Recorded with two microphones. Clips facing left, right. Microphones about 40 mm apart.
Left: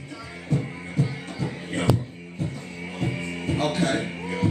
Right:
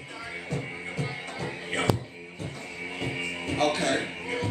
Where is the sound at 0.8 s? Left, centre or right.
Right.